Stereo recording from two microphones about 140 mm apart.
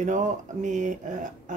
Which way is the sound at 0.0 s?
60° right (ahead or behind).